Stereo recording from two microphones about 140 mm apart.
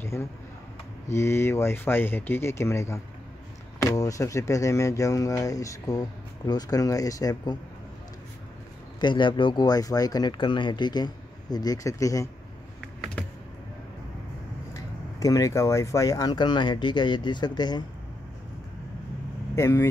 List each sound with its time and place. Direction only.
0.0 s a sound: 20° left (ahead or behind)
1.1 s speech: 20° left (ahead or behind)
9.0 s speech: 35° left (ahead or behind)
14.7 s speech: 25° left (ahead or behind)
19.5 s speech: 15° left (ahead or behind)